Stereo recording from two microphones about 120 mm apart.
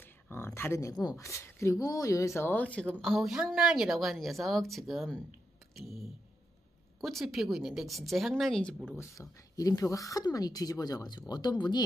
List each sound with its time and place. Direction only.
0.0 s a sound: 20° left (ahead or behind)
0.6 s a woman's voice: 25° left (ahead or behind); by 8.7 s 5° left (ahead or behind)
8.9 s speech: 25° left (ahead or behind)